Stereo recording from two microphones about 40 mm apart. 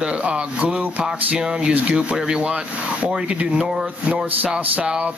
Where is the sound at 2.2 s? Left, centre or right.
Right.